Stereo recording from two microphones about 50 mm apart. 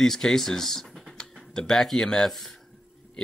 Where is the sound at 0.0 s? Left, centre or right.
Centre.